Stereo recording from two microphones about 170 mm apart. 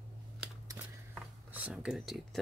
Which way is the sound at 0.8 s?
15° right (ahead or behind).